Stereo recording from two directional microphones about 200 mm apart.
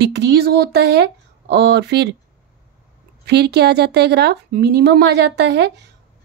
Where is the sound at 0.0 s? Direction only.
55° right (ahead or behind).